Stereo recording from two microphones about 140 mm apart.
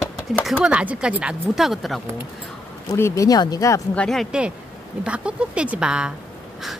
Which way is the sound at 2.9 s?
25° left (ahead or behind).